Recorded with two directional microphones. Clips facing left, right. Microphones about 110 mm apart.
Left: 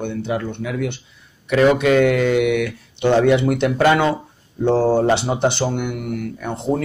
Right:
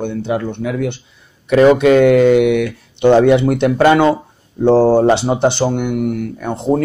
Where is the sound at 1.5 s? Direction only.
30° right (ahead or behind).